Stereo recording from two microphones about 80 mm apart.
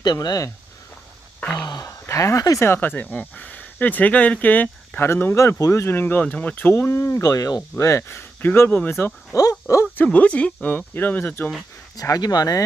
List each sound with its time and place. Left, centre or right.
0.0 s speech: left
1.4 s sigh: centre
1.9 s speech: left
2.6 s speech: left
7.7 s speech: left
9.3 s speech: left
9.9 s speech: centre
12.0 s speech: left